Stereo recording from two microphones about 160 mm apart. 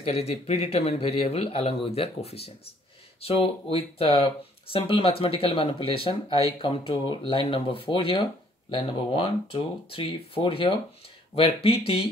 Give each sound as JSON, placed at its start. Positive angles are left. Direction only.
{"t": 0.0, "sound": "speech", "side_deg": 40}